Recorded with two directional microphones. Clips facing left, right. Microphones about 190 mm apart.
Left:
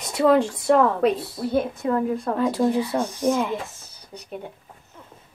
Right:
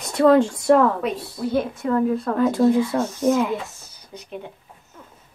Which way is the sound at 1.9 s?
20° left (ahead or behind).